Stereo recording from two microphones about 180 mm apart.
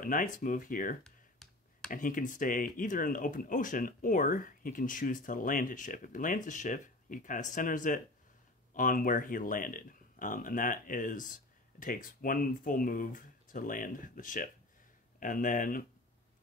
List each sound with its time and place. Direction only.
0.0 s speech: 50° left (ahead or behind)
1.0 s clicking: centre (ahead or behind)
1.9 s speech: 50° left (ahead or behind)